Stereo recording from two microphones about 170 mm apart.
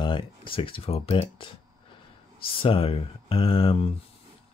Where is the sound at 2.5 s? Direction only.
30° left (ahead or behind).